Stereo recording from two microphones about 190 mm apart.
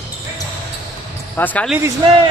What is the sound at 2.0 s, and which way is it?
Speech, 25° right (ahead or behind).